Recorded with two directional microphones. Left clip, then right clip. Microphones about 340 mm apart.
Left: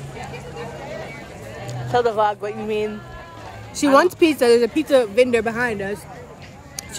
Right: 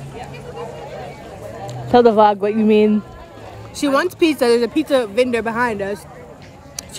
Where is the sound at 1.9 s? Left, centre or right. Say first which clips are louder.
Right 7 dB; right.